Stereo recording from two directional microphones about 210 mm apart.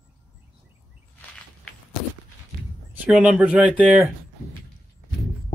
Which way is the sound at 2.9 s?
5° right (ahead or behind).